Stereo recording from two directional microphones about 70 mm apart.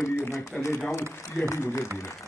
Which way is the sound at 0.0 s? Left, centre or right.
Left.